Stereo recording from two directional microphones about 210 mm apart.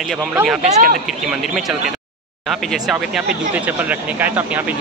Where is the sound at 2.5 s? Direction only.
Centre (ahead or behind).